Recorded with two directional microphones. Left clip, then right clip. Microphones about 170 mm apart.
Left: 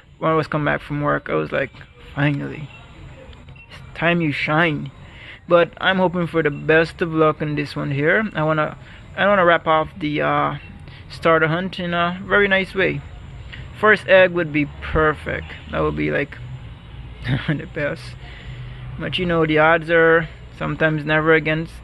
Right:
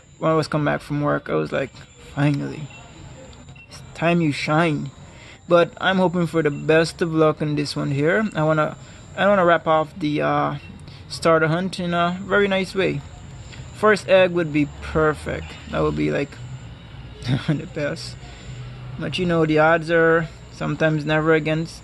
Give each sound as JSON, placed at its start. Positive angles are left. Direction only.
{"t": 0.2, "sound": "a man's voice", "side_deg": -15}
{"t": 3.9, "sound": "a man's voice", "side_deg": -15}